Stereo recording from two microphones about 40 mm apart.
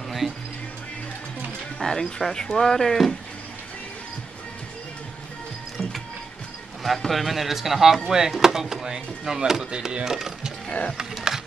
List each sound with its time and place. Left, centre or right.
1.8 s speech: centre
6.8 s speech: centre
10.7 s speech: left
11.0 s a sound: centre